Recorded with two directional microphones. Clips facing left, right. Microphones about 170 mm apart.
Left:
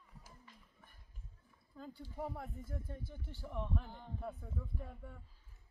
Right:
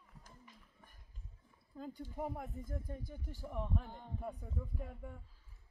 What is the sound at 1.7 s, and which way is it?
Speech, 15° right (ahead or behind).